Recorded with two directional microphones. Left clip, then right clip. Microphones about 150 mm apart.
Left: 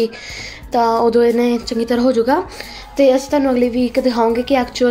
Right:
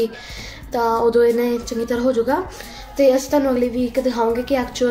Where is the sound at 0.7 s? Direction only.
45° left (ahead or behind).